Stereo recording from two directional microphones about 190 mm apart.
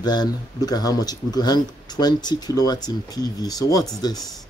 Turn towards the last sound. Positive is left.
turn(degrees=20)  # may be behind; listen again after turning